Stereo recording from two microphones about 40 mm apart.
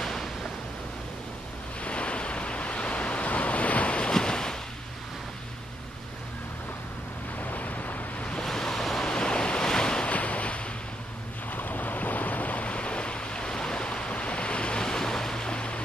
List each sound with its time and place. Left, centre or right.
0.0 s a sound: centre
1.8 s waves: left
4.1 s waves: centre
7.3 s waves: left
8.5 s waves: centre
9.0 s waves: left
10.1 s waves: left
11.5 s waves: left